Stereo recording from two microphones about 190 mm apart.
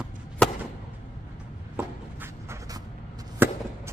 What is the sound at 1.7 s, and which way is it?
Walk, 10° right (ahead or behind).